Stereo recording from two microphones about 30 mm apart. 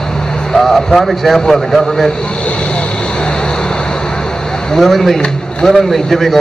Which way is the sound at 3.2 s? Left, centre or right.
Left.